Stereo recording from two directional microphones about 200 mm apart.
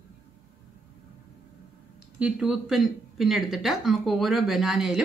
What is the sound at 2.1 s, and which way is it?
Speech, 5° right (ahead or behind).